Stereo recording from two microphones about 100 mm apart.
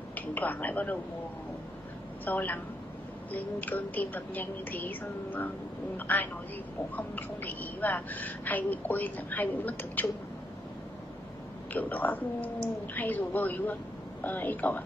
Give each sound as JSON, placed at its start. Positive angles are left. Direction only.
{"t": 0.1, "sound": "speech", "side_deg": 20}
{"t": 2.2, "sound": "a woman's voice", "side_deg": 20}
{"t": 11.7, "sound": "a woman's voice", "side_deg": 15}